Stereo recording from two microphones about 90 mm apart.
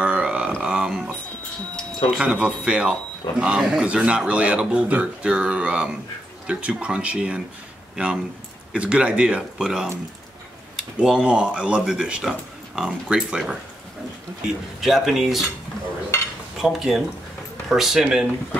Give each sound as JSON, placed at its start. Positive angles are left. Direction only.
{"t": 0.0, "sound": "a sound", "side_deg": -10}
{"t": 2.1, "sound": "speech", "side_deg": -10}
{"t": 14.8, "sound": "speech", "side_deg": 0}
{"t": 16.1, "sound": "dishes", "side_deg": 30}
{"t": 16.5, "sound": "speech", "side_deg": -5}